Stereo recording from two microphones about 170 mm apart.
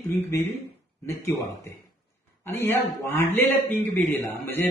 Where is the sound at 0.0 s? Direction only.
10° left (ahead or behind).